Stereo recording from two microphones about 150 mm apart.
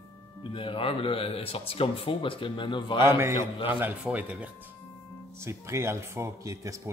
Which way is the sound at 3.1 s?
15° right (ahead or behind).